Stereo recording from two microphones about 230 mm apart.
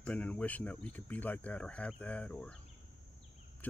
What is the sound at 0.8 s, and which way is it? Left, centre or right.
Speech, centre.